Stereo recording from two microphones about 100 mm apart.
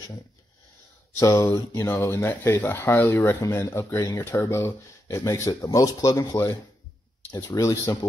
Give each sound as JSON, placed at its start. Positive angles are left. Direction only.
{"t": 1.2, "sound": "speech", "side_deg": 35}